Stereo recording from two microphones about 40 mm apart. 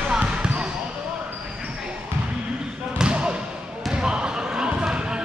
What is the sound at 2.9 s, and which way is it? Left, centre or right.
Basketball bounce, right.